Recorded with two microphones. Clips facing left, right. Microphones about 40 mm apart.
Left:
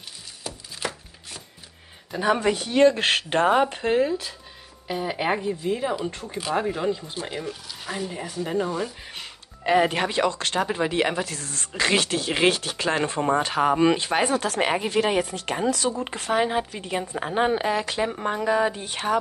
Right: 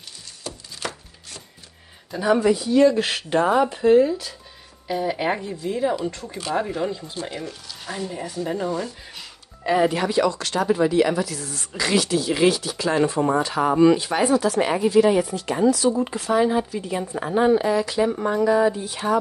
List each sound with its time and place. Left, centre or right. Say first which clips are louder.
0.7 s chopping: left 1 dB; centre
2.1 s speech: right 3 dB; left
2.5 s speech: right 2 dB; left
4.8 s speech: right 2 dB; centre
9.7 s speech: right 1 dB; left